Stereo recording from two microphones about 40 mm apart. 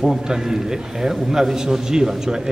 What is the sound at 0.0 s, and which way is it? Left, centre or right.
A man's voice, centre.